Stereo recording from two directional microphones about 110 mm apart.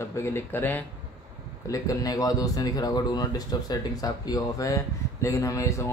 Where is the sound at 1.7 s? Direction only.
30° left (ahead or behind).